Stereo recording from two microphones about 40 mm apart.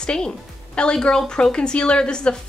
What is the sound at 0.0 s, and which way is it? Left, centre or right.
A woman's voice, left.